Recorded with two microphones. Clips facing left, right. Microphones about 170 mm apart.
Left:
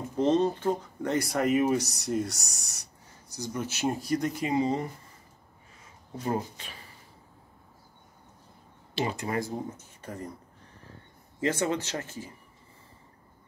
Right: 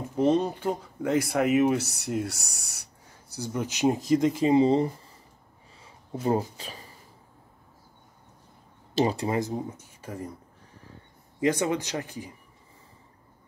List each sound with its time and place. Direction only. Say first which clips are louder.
0.2 s speech: right 1 dB; 10° right (ahead or behind)
4.0 s speech: right 6 dB; 90° right
4.4 s speech: right 7 dB; 30° right (ahead or behind)
6.2 s speech: right 5 dB; 30° right (ahead or behind)
8.9 s speech: right 5 dB; 35° right (ahead or behind)
9.4 s speech: right 3 dB; 10° right (ahead or behind)
11.3 s speech: right 3 dB; 15° right (ahead or behind)